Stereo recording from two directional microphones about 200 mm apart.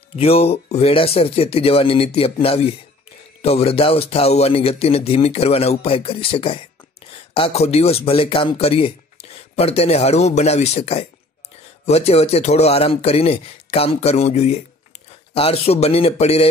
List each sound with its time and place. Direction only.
0.1 s speech: 30° left (ahead or behind)